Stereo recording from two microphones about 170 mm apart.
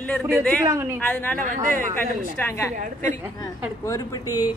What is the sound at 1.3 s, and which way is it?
Speech, 50° right (ahead or behind).